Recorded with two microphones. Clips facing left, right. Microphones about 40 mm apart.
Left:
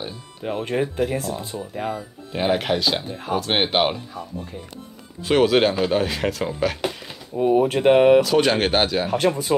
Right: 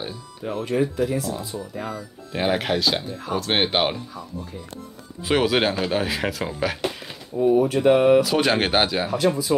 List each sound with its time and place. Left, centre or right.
0.4 s speech: left
2.3 s speech: centre
3.0 s speech: left
3.3 s speech: centre
5.3 s speech: centre
6.9 s a sound: centre
7.3 s speech: left
8.2 s speech: centre
9.1 s speech: left